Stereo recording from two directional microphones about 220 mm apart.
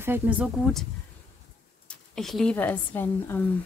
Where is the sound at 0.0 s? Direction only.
10° right (ahead or behind).